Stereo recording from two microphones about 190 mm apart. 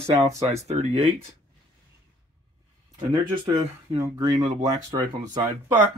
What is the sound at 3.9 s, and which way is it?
Speech, 15° right (ahead or behind).